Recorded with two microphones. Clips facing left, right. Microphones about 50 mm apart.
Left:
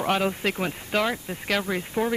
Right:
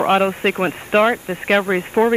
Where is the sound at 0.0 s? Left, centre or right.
Right.